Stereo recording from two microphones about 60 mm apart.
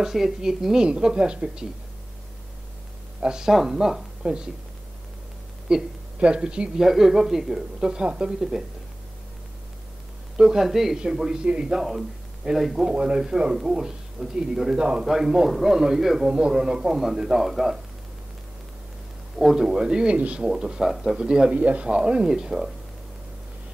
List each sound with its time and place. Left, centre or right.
0.0 s speech: centre
3.2 s speech: centre
5.7 s speech: centre
8.4 s speech: centre
10.3 s speech: centre
12.9 s speech: centre
19.3 s speech: centre